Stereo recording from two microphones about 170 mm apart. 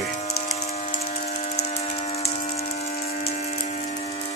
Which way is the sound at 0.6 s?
40° left (ahead or behind).